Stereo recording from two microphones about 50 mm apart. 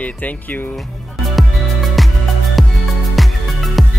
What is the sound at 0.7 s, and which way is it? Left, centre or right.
Music, centre.